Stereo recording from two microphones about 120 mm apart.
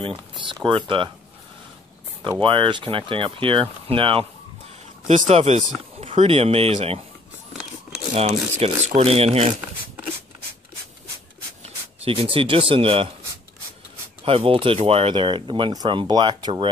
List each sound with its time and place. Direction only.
0.7 s speech: 45° right (ahead or behind)
2.4 s speech: 45° right (ahead or behind)
5.0 s speech: 85° right; by 7.0 s 55° right (ahead or behind)
8.1 s speech: 65° right (ahead or behind)
11.6 s speech: 55° right (ahead or behind)
14.2 s speech: 50° right (ahead or behind)